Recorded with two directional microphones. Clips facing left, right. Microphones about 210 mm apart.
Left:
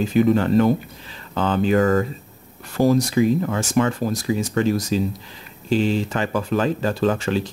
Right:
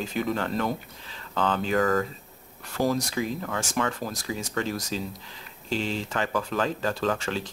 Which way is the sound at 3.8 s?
15° left (ahead or behind).